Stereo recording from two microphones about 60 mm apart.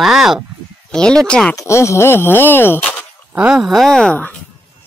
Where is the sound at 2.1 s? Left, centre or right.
Left.